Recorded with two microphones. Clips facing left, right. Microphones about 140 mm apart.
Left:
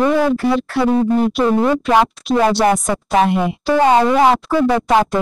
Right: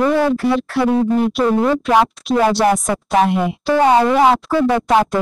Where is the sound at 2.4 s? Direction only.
Centre (ahead or behind).